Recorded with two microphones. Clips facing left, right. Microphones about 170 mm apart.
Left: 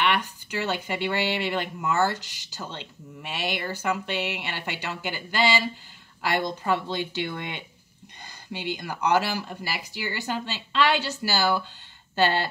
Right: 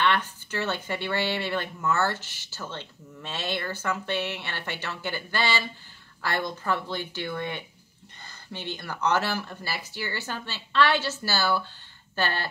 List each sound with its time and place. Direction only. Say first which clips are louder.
0.0 s speech: even; 15° left (ahead or behind)